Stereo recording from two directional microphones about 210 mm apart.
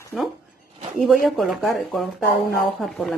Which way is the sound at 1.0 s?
Centre (ahead or behind).